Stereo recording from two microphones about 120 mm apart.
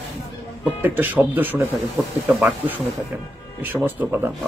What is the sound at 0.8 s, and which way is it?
Speech, 15° right (ahead or behind).